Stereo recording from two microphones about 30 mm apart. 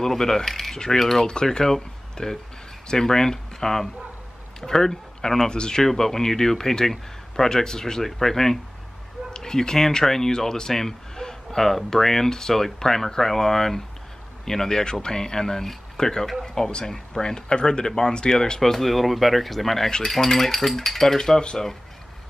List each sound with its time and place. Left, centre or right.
0.2 s speech: centre
1.2 s speech: left
1.6 s speech: centre
5.5 s speech: left
5.8 s speech: centre
8.0 s speech: centre; by 18.4 s left
18.6 s speech: centre